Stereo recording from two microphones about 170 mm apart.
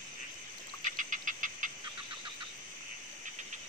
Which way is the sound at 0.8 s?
50° right (ahead or behind).